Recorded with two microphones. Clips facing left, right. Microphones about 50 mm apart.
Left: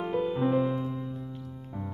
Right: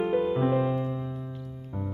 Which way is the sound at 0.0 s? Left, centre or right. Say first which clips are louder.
Right 3 dB; centre.